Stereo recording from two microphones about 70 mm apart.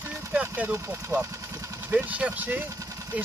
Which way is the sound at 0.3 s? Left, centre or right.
Centre.